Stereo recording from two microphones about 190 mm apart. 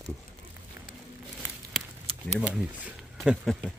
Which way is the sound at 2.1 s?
30° right (ahead or behind).